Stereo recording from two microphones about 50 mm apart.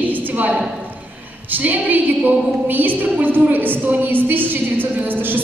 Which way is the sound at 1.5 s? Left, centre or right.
Right.